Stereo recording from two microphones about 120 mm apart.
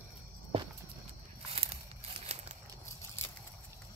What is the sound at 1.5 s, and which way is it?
Crumpling, 55° right (ahead or behind).